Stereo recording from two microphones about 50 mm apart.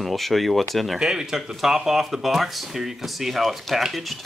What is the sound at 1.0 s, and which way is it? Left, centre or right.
Speech, centre.